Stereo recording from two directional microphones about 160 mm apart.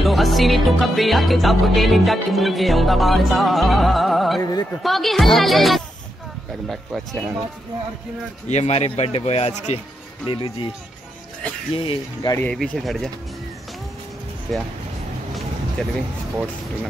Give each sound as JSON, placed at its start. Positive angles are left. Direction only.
{"t": 0.0, "sound": "music", "side_deg": 0}
{"t": 4.4, "sound": "speech", "side_deg": 20}
{"t": 4.8, "sound": "music", "side_deg": 0}
{"t": 8.5, "sound": "speech", "side_deg": 45}
{"t": 11.7, "sound": "speech", "side_deg": 35}
{"t": 12.4, "sound": "music", "side_deg": 5}
{"t": 14.5, "sound": "music", "side_deg": 0}